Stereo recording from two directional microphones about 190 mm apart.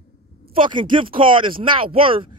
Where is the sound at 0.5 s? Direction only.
25° right (ahead or behind).